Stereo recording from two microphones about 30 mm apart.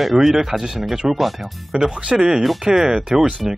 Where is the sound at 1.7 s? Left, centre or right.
Right.